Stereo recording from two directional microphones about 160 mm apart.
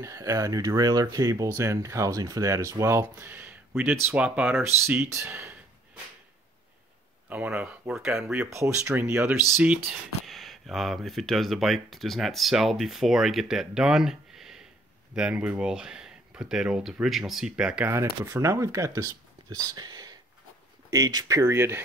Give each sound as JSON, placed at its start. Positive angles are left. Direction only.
{"t": 0.0, "sound": "speech", "side_deg": -20}
{"t": 7.2, "sound": "speech", "side_deg": -10}
{"t": 9.8, "sound": "speech", "side_deg": 0}
{"t": 18.2, "sound": "speech", "side_deg": -20}